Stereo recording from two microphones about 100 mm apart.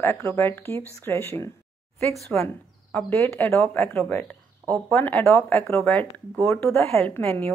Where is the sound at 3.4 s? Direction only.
20° left (ahead or behind).